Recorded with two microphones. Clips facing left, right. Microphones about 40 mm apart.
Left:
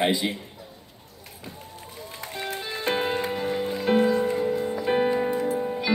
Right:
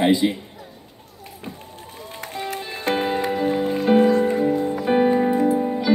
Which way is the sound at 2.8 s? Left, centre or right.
Right.